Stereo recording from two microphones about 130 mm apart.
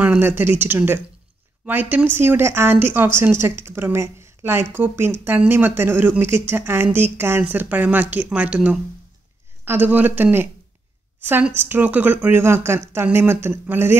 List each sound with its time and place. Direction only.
0.0 s speech: 15° right (ahead or behind)